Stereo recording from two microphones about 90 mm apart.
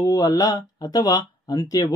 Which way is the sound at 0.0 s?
45° left (ahead or behind).